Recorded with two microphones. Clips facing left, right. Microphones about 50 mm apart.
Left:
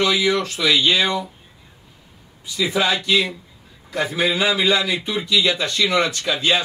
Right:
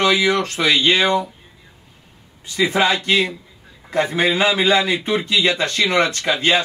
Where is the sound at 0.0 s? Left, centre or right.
Right.